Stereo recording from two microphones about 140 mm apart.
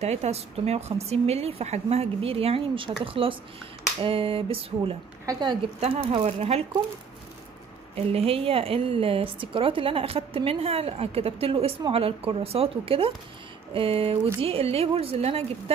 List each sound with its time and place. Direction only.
0.0 s a woman's voice: 50° right (ahead or behind)
4.0 s a sound: 40° right (ahead or behind)
5.2 s a woman's voice: 30° right (ahead or behind)
5.8 s a sound: 40° right (ahead or behind)
6.2 s a woman's voice: 45° right (ahead or behind)
7.9 s a woman's voice: 45° right (ahead or behind)